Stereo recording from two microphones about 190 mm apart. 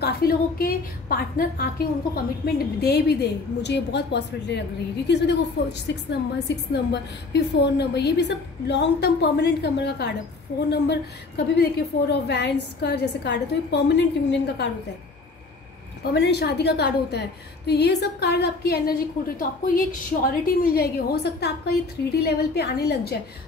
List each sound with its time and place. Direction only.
0.0 s a woman's voice: 50° left (ahead or behind)
16.0 s a woman's voice: 60° left (ahead or behind)